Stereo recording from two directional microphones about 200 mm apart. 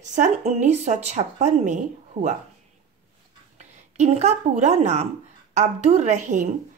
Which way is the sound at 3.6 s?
35° right (ahead or behind).